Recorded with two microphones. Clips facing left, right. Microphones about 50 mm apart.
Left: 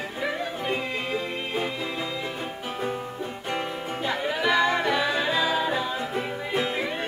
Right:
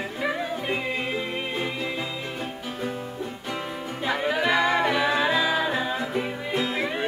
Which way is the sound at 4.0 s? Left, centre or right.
Centre.